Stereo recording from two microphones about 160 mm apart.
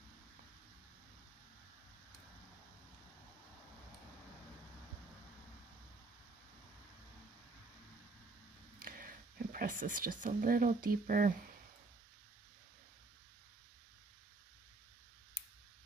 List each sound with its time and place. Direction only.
8.8 s speech: 60° right (ahead or behind)